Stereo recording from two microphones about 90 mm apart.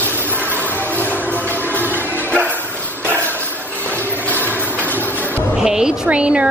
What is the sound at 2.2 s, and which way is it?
Bow-wow, 20° right (ahead or behind).